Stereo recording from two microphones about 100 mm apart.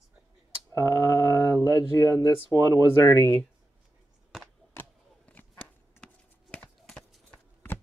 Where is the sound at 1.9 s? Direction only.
30° left (ahead or behind).